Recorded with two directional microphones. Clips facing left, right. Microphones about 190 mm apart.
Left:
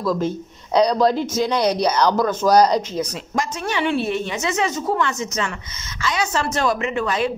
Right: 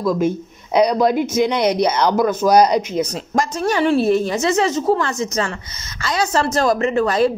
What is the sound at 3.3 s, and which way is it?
A woman's voice, 40° right (ahead or behind).